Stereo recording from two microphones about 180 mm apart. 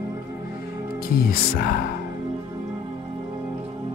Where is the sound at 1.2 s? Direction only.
55° left (ahead or behind).